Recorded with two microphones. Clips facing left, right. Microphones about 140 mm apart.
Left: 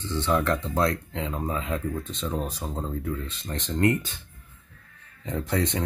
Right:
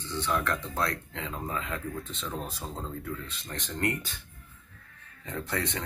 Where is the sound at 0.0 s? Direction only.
20° left (ahead or behind).